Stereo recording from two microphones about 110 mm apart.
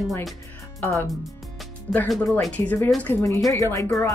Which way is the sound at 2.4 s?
10° left (ahead or behind).